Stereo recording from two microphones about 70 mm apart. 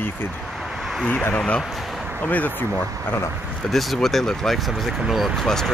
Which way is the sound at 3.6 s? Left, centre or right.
Centre.